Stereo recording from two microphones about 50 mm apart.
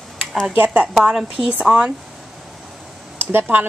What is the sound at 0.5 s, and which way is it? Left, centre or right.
Speech, right.